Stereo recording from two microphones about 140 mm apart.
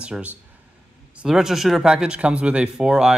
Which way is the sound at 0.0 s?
5° right (ahead or behind).